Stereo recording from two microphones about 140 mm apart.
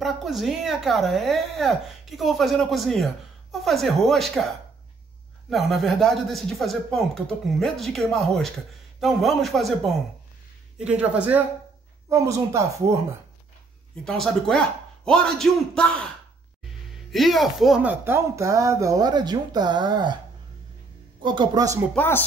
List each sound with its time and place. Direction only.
0.0 s a woman's voice: centre (ahead or behind)
10.8 s speech: 10° right (ahead or behind)
12.1 s speech: 20° right (ahead or behind)
14.0 s a woman's voice: 5° left (ahead or behind)
17.1 s speech: centre (ahead or behind); by 20.2 s 30° right (ahead or behind)
21.2 s speech: 35° right (ahead or behind)
21.9 s speech: 15° left (ahead or behind)